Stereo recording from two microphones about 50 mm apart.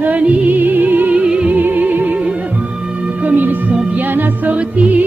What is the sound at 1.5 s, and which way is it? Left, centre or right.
Music, right.